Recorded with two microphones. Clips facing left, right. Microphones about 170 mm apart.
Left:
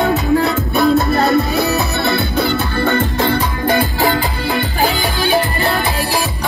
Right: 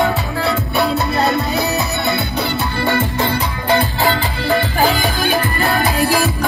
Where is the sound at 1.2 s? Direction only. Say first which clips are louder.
Left 3 dB; 60° left (ahead or behind).